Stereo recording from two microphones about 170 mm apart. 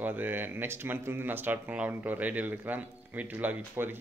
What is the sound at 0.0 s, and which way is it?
Speech, 10° right (ahead or behind).